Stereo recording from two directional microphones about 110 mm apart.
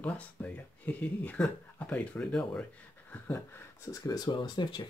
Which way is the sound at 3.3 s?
25° left (ahead or behind).